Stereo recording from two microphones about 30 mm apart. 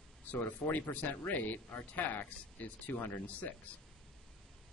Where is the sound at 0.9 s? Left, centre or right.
Left.